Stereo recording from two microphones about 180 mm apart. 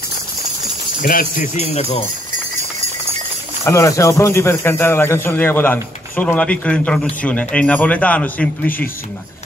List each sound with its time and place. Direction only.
1.0 s speech: 50° left (ahead or behind); by 2.0 s 35° left (ahead or behind)
3.6 s speech: 15° left (ahead or behind)